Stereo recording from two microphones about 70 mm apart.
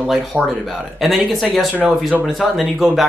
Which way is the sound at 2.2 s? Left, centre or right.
Centre.